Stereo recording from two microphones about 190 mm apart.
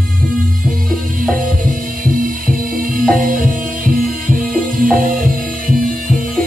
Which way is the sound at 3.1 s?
45° right (ahead or behind).